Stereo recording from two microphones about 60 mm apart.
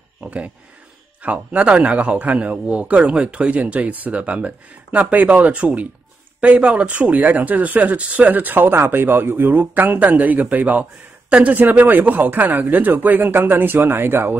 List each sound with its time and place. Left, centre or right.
0.2 s speech: right